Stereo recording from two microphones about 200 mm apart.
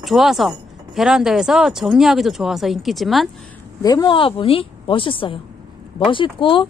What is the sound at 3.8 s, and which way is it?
A woman's voice, 20° left (ahead or behind).